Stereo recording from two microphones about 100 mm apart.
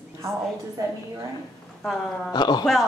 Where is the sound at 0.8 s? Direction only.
35° right (ahead or behind).